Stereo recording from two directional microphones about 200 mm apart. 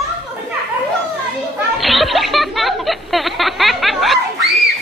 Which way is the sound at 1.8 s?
Centre (ahead or behind).